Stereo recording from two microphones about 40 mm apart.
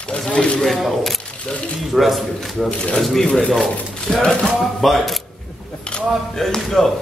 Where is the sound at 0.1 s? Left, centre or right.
Left.